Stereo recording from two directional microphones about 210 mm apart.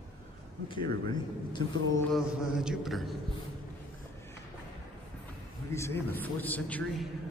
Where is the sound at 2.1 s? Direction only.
5° right (ahead or behind).